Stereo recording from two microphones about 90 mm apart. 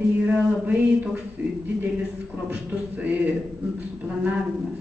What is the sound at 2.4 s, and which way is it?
A man's voice, 15° right (ahead or behind).